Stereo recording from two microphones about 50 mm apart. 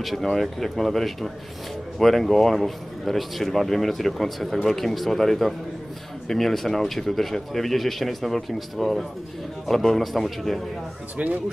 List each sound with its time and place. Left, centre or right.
0.0 s a man's voice: centre
11.2 s speech: right